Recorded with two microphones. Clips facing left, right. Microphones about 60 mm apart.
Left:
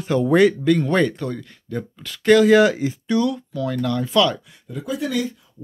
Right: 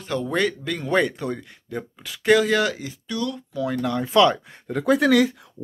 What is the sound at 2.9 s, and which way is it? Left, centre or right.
Speech, left.